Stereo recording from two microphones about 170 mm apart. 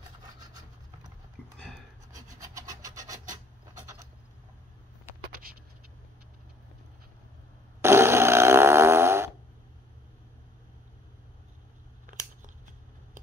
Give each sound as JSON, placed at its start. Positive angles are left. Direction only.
{"t": 2.4, "sound": "wood", "side_deg": -20}
{"t": 3.8, "sound": "a sound", "side_deg": -20}
{"t": 5.3, "sound": "vehicle", "side_deg": -60}
{"t": 7.8, "sound": "fart", "side_deg": -15}
{"t": 12.1, "sound": "scissors", "side_deg": -50}